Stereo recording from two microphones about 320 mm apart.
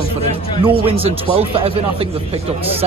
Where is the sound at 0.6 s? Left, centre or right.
Centre.